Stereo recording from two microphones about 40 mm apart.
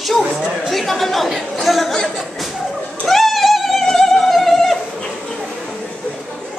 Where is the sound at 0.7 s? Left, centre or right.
Centre.